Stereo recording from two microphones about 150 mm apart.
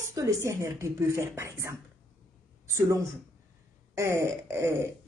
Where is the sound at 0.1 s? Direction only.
20° right (ahead or behind).